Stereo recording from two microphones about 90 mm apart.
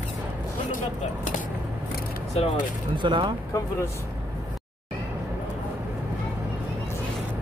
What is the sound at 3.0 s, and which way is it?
Speech, 65° right (ahead or behind).